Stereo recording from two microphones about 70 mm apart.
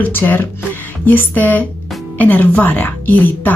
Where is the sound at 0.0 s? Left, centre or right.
Left.